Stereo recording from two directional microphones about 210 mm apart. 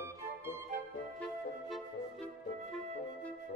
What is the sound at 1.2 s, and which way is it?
Music, 5° left (ahead or behind).